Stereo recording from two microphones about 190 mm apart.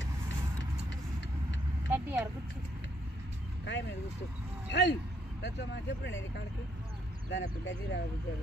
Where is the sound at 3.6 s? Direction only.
70° left (ahead or behind).